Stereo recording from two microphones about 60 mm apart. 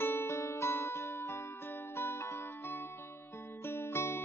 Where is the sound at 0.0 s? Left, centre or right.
Left.